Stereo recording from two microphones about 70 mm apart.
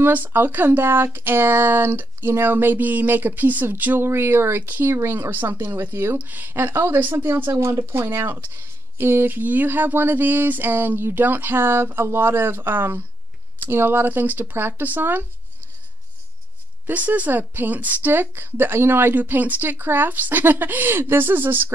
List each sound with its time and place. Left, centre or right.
0.0 s speech: right
6.1 s speech: right
7.0 s speech: right
7.6 s speech: right
16.8 s speech: right